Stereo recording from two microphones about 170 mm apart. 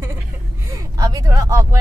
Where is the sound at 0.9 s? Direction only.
20° right (ahead or behind).